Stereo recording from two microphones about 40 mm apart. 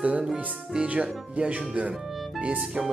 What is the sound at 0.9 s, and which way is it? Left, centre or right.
Speech, right.